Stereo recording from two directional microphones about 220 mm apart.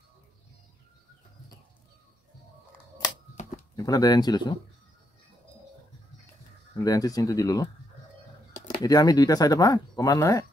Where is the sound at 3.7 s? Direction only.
15° left (ahead or behind).